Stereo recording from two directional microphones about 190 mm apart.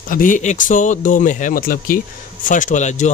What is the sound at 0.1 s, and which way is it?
Speech, 45° left (ahead or behind).